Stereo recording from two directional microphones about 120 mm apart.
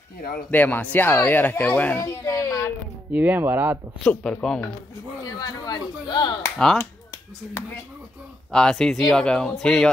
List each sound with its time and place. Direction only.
0.5 s speech: 15° left (ahead or behind)
3.1 s speech: 15° right (ahead or behind)
4.0 s speech: 10° left (ahead or behind)
5.2 s speech: 35° left (ahead or behind)
8.5 s speech: 5° left (ahead or behind)